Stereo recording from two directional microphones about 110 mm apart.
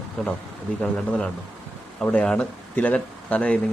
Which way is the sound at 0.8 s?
10° left (ahead or behind).